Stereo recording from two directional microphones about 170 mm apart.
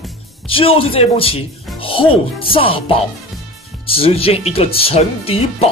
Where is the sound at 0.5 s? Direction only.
30° left (ahead or behind).